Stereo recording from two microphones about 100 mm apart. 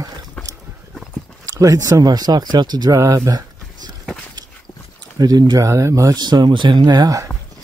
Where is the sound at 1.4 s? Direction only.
35° right (ahead or behind).